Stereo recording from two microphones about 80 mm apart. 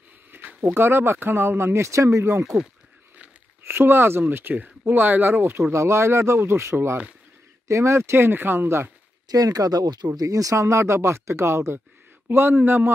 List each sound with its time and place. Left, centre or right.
0.3 s speech: right
3.6 s speech: right
5.7 s speech: right
9.3 s speech: right
10.1 s speech: right